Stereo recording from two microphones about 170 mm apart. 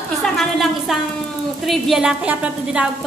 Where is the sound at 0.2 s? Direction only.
Centre (ahead or behind).